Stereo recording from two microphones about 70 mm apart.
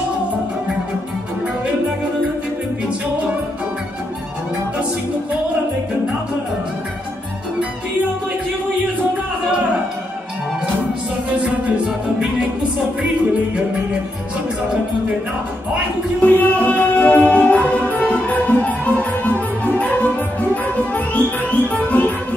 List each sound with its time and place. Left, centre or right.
11.2 s music: centre
16.2 s music: left